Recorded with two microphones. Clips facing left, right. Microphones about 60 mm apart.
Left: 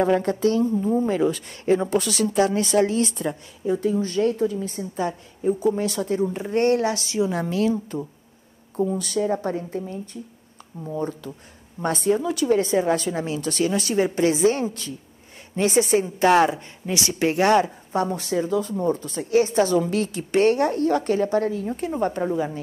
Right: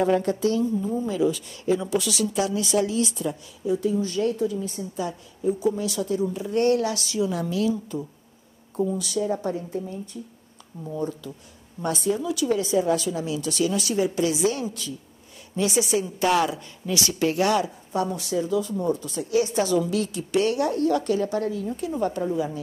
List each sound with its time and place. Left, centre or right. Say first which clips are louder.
0.0 s a woman's voice: left 2 dB; left